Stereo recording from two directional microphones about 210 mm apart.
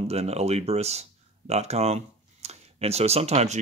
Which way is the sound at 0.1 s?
30° right (ahead or behind).